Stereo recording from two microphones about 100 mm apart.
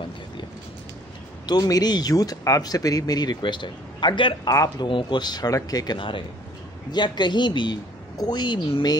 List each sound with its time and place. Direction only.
1.4 s speech: 40° left (ahead or behind)
4.5 s speech: 40° left (ahead or behind)
4.8 s a woman's voice: 55° left (ahead or behind)
5.9 s a woman's voice: 55° left (ahead or behind)